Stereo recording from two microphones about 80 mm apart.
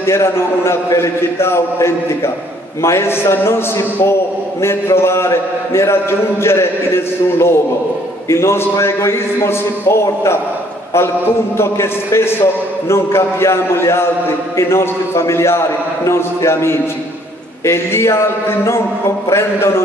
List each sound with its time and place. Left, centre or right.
0.0 s a man's voice: left